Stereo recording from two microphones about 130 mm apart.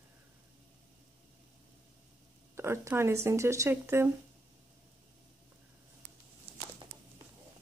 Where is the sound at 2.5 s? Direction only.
20° right (ahead or behind).